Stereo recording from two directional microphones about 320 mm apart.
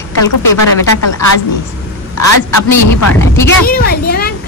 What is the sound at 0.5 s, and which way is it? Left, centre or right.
Speech, left.